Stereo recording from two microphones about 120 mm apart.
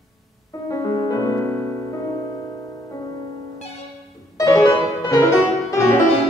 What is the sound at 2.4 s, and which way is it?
Music, 30° left (ahead or behind).